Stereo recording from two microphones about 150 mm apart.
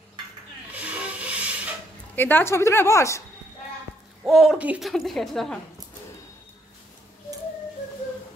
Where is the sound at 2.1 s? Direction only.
15° left (ahead or behind).